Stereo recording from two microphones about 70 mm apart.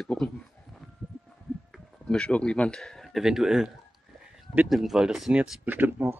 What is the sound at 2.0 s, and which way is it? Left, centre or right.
Speech, centre.